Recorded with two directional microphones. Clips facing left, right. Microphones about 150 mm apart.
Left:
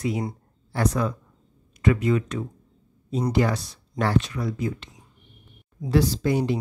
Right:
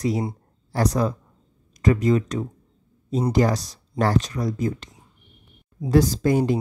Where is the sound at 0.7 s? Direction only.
35° right (ahead or behind).